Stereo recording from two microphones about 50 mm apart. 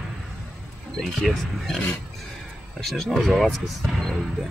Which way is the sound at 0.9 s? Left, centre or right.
Centre.